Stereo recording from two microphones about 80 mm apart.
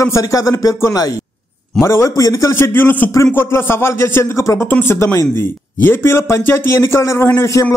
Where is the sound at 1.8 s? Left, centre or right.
Left.